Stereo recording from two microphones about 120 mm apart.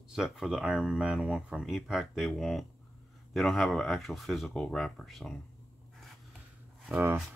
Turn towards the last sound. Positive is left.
turn(degrees=-15)  # may be behind; listen again after turning